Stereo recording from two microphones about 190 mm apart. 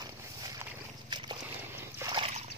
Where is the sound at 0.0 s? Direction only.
20° right (ahead or behind).